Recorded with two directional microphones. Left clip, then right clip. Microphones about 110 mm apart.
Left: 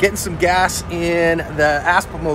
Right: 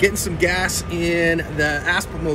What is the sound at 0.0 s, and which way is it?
Speech, 20° right (ahead or behind).